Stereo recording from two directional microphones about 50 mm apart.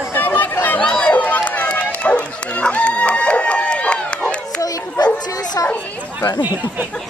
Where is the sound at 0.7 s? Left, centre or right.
Left.